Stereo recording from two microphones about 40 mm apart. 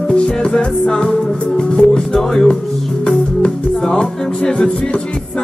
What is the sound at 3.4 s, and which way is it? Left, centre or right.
Music, centre.